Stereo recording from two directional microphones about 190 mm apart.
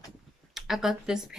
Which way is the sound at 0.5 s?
Centre (ahead or behind).